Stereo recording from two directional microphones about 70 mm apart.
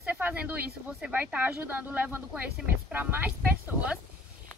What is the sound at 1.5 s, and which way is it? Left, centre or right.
Speech, right.